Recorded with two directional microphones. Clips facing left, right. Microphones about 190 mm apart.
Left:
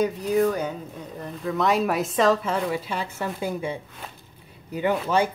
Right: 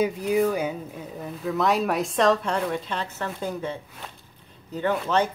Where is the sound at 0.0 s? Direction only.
5° right (ahead or behind); by 3.7 s 10° left (ahead or behind).